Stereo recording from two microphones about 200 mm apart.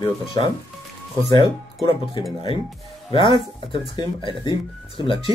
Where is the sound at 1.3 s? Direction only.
25° left (ahead or behind).